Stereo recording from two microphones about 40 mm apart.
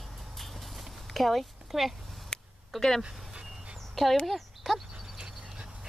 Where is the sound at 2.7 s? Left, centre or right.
Centre.